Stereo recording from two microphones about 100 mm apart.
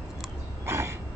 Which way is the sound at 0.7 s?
25° right (ahead or behind).